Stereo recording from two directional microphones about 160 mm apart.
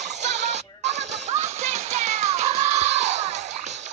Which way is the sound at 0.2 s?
45° right (ahead or behind).